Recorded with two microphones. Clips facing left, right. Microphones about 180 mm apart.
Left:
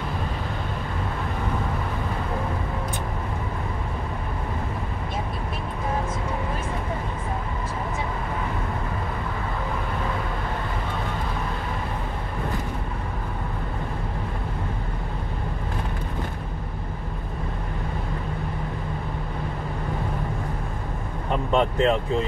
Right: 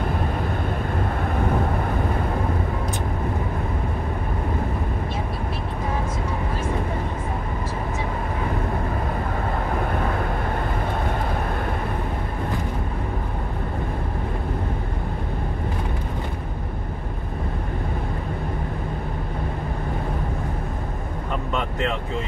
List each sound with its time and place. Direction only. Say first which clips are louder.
21.5 s vehicle: left 7 dB; 30° left (ahead or behind)